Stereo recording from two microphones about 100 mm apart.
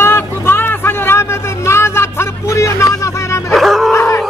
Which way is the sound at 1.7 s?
25° left (ahead or behind).